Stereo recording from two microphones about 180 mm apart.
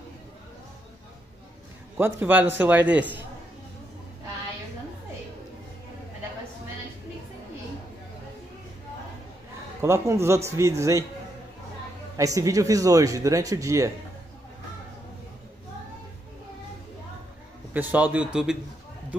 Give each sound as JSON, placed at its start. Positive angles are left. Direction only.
{"t": 2.0, "sound": "a man's voice", "side_deg": -15}
{"t": 9.8, "sound": "a man's voice", "side_deg": -15}
{"t": 12.2, "sound": "speech", "side_deg": -20}
{"t": 17.7, "sound": "a man's voice", "side_deg": -10}